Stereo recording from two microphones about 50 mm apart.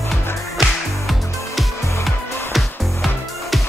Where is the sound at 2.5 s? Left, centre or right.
Centre.